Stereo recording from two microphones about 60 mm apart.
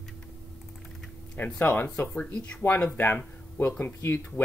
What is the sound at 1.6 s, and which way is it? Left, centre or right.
Speech, left.